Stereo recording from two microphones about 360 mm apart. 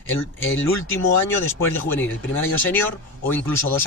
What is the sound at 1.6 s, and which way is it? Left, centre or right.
Speech, centre.